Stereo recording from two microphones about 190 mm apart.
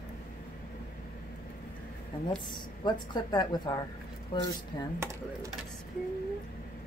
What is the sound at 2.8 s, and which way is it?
A woman's voice, 20° left (ahead or behind).